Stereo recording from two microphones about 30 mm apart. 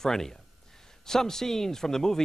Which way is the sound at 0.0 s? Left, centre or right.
Centre.